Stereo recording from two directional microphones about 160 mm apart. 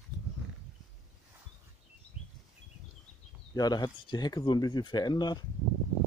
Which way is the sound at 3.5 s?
25° left (ahead or behind).